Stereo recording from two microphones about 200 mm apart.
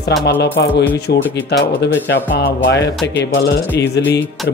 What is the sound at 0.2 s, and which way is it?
Speech, 55° left (ahead or behind).